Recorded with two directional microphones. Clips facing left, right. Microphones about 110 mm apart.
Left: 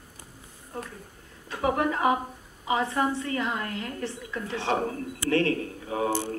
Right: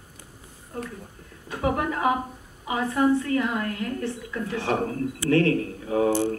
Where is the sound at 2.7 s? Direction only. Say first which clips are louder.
Right 4 dB; 25° left (ahead or behind).